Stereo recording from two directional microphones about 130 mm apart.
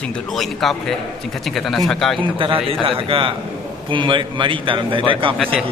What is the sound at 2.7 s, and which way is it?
A man's voice, 45° right (ahead or behind).